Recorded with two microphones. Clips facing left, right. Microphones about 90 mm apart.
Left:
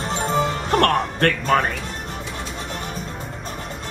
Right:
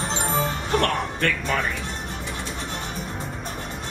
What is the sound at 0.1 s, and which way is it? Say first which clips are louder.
Music: left 5 dB; 55° left (ahead or behind).